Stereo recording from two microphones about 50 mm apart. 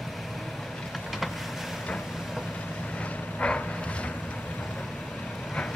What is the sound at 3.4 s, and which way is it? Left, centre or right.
Vehicle, left.